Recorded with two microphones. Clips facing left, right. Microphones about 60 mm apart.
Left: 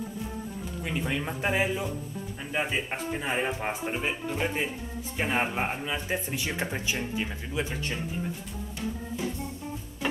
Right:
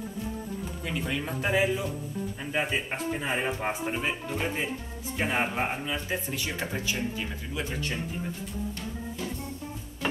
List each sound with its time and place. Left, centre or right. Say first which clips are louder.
0.8 s speech: left 1 dB; centre
2.5 s speech: even; centre
5.9 s speech: left 1 dB; left